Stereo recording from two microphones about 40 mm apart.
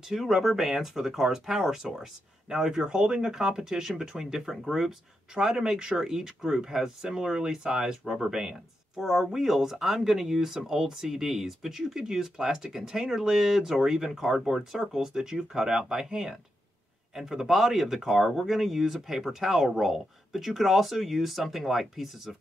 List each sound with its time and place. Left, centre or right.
0.1 s speech: centre
5.3 s speech: centre